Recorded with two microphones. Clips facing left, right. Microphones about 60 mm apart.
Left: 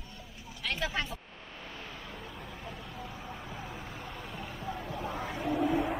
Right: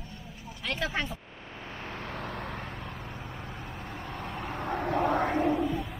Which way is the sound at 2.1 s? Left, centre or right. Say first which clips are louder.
Right 8 dB; right.